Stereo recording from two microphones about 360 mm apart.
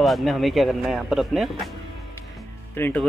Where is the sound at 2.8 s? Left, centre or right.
Centre.